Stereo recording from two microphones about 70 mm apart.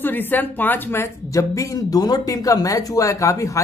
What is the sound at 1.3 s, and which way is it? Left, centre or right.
Speech, left.